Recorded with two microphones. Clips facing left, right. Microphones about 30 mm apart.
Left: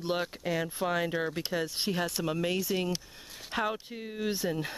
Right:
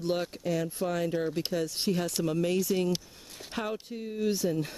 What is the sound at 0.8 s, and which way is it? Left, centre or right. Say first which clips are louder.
Speech: left 2 dB; left.